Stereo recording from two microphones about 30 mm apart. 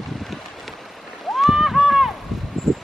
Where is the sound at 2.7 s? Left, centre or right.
Centre.